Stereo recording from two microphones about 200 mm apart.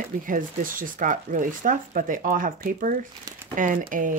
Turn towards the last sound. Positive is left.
turn(degrees=-40)  # may be behind; listen again after turning